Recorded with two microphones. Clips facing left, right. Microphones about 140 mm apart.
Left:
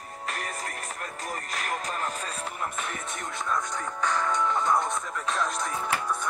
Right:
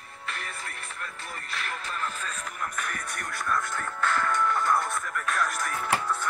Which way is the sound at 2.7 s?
25° left (ahead or behind).